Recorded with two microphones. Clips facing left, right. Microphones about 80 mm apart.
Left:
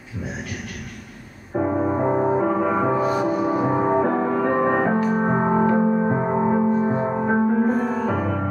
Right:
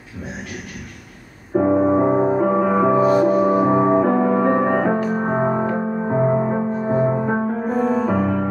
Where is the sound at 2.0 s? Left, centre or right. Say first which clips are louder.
Right 3 dB; centre.